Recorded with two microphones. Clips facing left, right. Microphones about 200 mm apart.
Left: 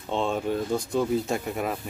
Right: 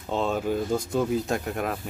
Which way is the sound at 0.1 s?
5° right (ahead or behind).